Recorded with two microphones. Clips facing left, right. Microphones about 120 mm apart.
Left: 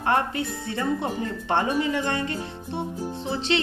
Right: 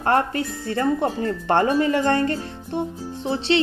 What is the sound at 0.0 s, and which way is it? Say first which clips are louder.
Speech: right 3 dB; 45° right (ahead or behind).